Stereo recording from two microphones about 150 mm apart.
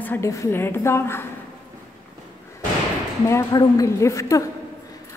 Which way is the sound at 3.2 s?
25° left (ahead or behind).